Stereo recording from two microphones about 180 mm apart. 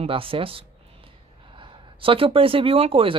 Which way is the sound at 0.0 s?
30° right (ahead or behind).